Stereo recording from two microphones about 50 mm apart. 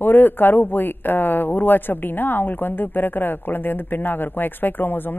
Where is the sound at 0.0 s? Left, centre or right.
Left.